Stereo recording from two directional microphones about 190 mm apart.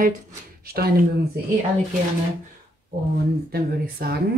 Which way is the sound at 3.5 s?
55° right (ahead or behind).